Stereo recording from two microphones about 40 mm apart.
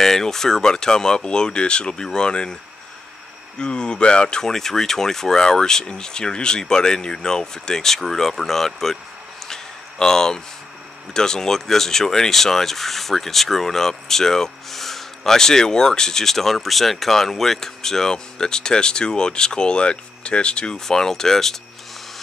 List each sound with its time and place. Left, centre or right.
0.0 s speech: centre
3.5 s speech: left
9.5 s a sound: centre
11.1 s speech: centre
20.8 s speech: centre